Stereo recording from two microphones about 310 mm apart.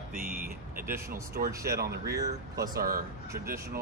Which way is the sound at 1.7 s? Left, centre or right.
Right.